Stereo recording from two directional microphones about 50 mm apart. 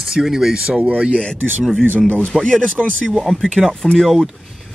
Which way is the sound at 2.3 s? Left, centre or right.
Centre.